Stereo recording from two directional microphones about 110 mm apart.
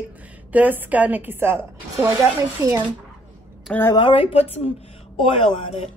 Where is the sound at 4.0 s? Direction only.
50° left (ahead or behind).